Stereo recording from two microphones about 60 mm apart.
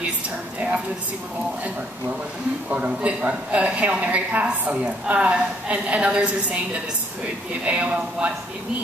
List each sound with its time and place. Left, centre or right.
2.7 s a woman's voice: right